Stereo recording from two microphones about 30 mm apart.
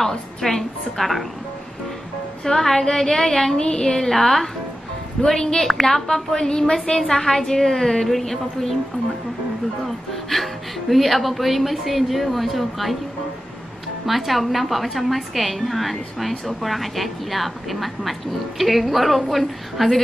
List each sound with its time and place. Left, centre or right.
0.0 s a woman's voice: centre
2.4 s a woman's voice: centre
3.5 s a woman's voice: left; by 4.5 s centre
5.2 s a woman's voice: left
9.8 s a woman's voice: centre
14.0 s a woman's voice: centre